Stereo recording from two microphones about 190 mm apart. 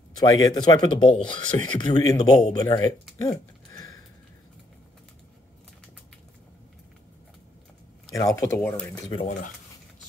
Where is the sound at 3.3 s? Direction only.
20° left (ahead or behind).